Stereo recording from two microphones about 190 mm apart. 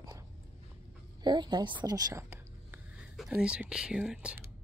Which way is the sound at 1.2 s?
20° right (ahead or behind).